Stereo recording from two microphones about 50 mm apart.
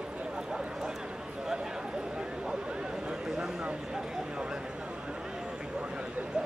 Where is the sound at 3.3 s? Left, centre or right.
Centre.